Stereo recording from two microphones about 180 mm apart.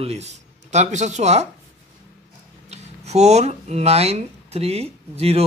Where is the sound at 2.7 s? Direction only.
35° right (ahead or behind).